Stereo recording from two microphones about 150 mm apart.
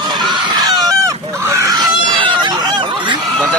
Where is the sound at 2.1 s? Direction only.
30° right (ahead or behind).